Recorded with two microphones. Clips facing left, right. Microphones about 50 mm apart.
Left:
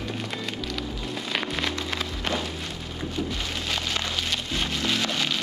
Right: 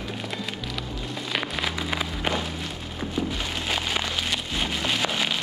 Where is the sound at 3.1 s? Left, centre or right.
Centre.